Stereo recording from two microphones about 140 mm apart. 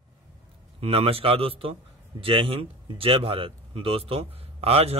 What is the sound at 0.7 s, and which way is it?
A man's voice, 45° right (ahead or behind).